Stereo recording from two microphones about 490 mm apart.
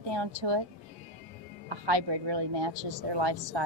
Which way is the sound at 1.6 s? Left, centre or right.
Right.